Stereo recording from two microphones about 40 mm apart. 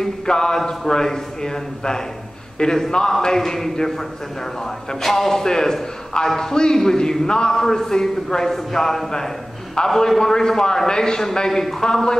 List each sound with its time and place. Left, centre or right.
0.0 s a man's voice: centre
5.0 s a man's voice: centre